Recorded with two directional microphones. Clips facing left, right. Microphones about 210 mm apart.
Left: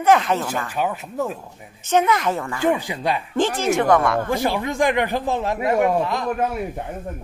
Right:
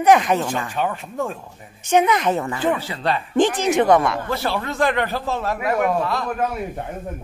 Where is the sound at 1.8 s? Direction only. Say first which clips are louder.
Right 1 dB; 15° right (ahead or behind).